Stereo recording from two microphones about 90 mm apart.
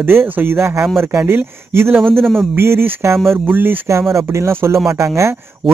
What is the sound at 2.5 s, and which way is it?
Speech, 25° right (ahead or behind).